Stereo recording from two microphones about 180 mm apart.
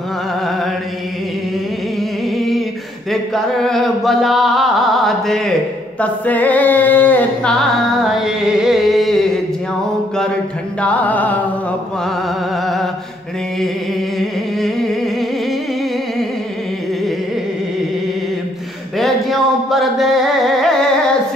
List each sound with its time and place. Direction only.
2.3 s a sound: centre (ahead or behind)
3.1 s music: centre (ahead or behind)
8.0 s music: centre (ahead or behind)
10.8 s music: 10° left (ahead or behind)
14.1 s a sound: centre (ahead or behind)
18.9 s music: centre (ahead or behind)